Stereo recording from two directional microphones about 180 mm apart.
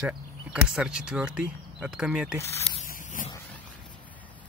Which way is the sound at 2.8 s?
50° left (ahead or behind).